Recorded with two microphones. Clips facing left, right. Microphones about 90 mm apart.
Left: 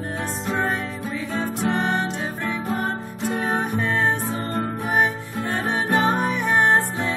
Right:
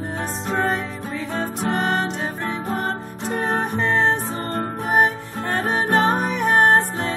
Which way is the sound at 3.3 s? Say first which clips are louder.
Right 1 dB; 50° right (ahead or behind).